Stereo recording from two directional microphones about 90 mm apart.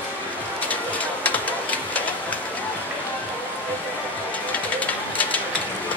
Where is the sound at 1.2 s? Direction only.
15° left (ahead or behind).